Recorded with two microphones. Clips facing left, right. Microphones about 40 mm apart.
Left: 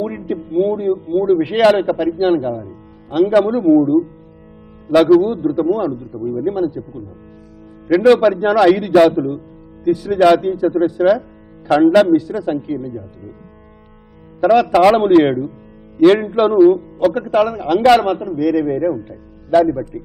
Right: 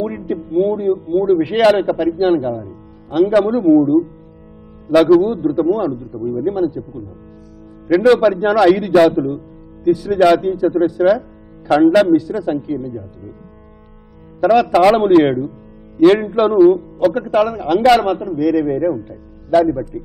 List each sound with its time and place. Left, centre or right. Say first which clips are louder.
0.0 s music: right 1 dB; centre
0.6 s a man's voice: right 1 dB; centre
7.9 s a man's voice: left 1 dB; centre
12.6 s speech: right 1 dB; left
14.4 s a man's voice: even; centre